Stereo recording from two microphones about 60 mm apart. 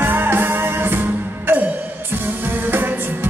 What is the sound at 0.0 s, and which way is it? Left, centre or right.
Music, right.